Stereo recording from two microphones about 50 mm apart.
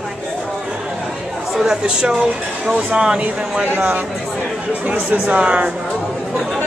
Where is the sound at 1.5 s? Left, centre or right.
Centre.